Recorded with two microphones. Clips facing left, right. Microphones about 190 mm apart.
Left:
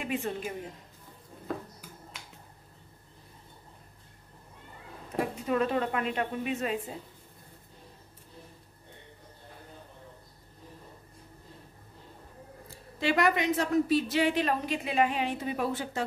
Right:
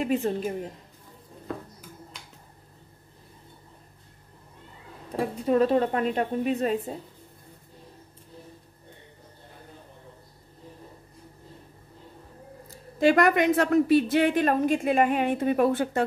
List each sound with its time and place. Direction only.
0.0 s a woman's voice: 40° right (ahead or behind)
5.5 s a woman's voice: 35° right (ahead or behind)
12.6 s speech: 45° right (ahead or behind)